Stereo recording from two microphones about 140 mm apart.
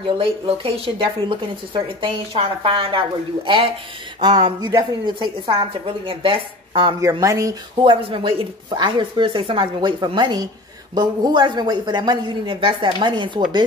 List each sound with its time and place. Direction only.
0.0 s speech: 40° right (ahead or behind)
7.0 s speech: 25° right (ahead or behind)
7.9 s speech: 40° right (ahead or behind)